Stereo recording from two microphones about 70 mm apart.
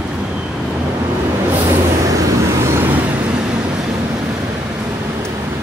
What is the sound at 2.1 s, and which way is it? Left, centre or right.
Vehicle, right.